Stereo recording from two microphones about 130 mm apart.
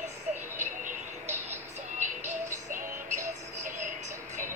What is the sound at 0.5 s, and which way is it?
Vehicle, 80° right.